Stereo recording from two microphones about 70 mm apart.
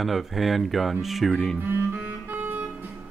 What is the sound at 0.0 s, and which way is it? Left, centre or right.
Speech, centre.